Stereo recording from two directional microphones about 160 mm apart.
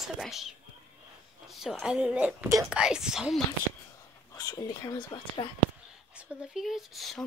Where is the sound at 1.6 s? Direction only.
Centre (ahead or behind).